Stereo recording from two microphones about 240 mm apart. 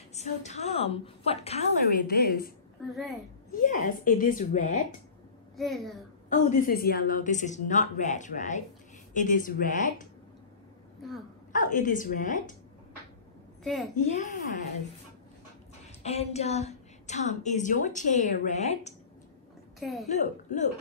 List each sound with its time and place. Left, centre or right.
0.1 s a woman's voice: left
2.1 s a woman's voice: left
2.9 s a child's voice: centre
3.5 s a woman's voice: left
5.6 s a child's voice: centre
6.3 s a woman's voice: left
11.5 s a woman's voice: left
13.9 s a woman's voice: left
16.0 s a woman's voice: left
19.8 s a child's voice: centre
20.1 s a woman's voice: left